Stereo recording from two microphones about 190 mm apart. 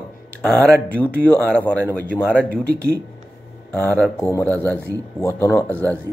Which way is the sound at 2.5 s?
55° right (ahead or behind).